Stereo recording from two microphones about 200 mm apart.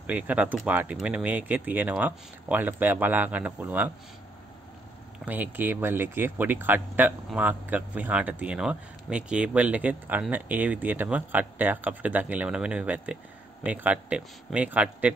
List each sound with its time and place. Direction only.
0.0 s speech: 10° right (ahead or behind)
5.2 s speech: 10° right (ahead or behind)